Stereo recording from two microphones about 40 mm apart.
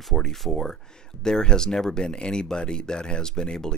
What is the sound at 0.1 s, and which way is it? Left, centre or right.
Speech, centre.